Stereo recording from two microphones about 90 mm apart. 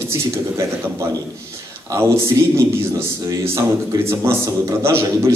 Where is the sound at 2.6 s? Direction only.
30° right (ahead or behind).